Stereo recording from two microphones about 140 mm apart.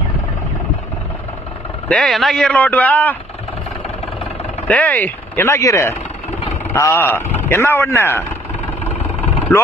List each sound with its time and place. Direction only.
1.9 s speech: centre (ahead or behind)
4.6 s speech: 10° left (ahead or behind)
9.5 s speech: 10° left (ahead or behind)